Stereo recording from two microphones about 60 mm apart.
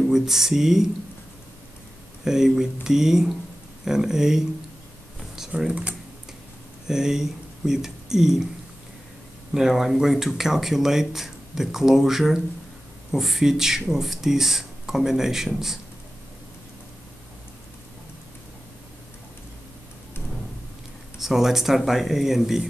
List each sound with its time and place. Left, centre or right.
0.1 s speech: centre
2.2 s speech: centre
5.3 s computer keyboard: centre
5.7 s speech: right
6.9 s speech: centre
9.5 s speech: centre
21.2 s speech: centre